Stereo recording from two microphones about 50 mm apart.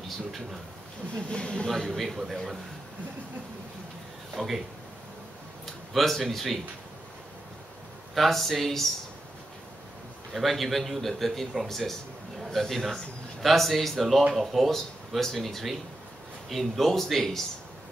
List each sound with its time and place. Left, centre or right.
1.1 s speech: centre
1.9 s a man's voice: centre
4.4 s a man's voice: centre
5.9 s a man's voice: centre
8.1 s a man's voice: centre
10.3 s a man's voice: centre